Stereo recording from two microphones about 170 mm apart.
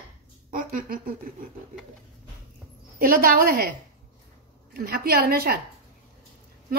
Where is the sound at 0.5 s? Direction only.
55° right (ahead or behind).